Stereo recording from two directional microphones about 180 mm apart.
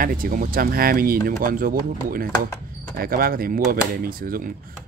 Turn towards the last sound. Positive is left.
turn(degrees=-55)  # may be behind; listen again after turning